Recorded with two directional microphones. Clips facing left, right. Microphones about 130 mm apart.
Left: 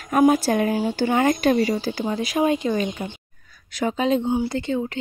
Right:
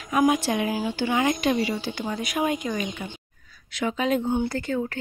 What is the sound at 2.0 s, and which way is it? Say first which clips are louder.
Speech: left 4 dB; 25° left (ahead or behind).